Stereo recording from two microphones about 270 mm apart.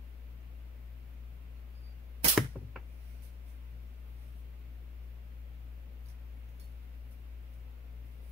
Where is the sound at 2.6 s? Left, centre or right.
Centre.